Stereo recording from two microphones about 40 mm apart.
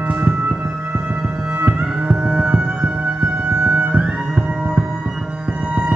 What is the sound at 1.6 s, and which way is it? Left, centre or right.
Music, right.